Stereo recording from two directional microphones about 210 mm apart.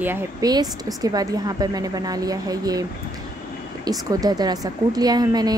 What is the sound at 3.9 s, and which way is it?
Speech, 15° right (ahead or behind).